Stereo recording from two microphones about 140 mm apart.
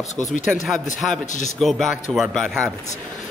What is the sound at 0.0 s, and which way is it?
Speech, 55° left (ahead or behind).